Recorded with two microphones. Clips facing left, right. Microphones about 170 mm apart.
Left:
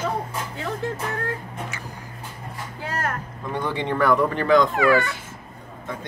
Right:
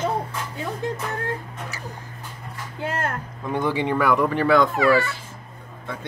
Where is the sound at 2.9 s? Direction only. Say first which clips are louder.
Even; 25° right (ahead or behind).